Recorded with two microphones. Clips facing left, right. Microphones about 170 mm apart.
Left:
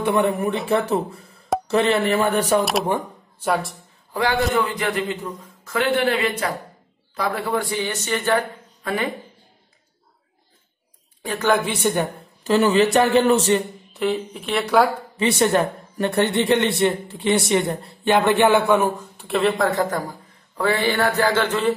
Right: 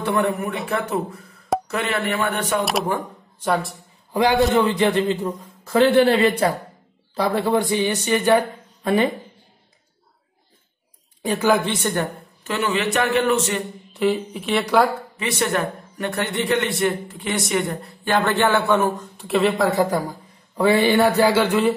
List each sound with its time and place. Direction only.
0.0 s a man's voice: 20° left (ahead or behind); by 2.6 s 35° left (ahead or behind)
2.6 s speech: centre (ahead or behind)
4.1 s a man's voice: 15° right (ahead or behind)
8.8 s speech: 25° right (ahead or behind)
11.2 s a man's voice: 10° right (ahead or behind)
11.6 s speech: 10° left (ahead or behind)
12.4 s speech: 35° left (ahead or behind)
13.9 s speech: centre (ahead or behind)
15.1 s a man's voice: 30° left (ahead or behind); by 19.0 s 10° left (ahead or behind)
19.1 s a man's voice: centre (ahead or behind)